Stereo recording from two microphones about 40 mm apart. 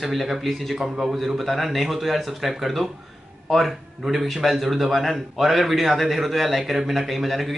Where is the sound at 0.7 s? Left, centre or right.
Centre.